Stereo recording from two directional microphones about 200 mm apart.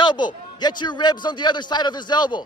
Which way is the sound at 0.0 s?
20° left (ahead or behind).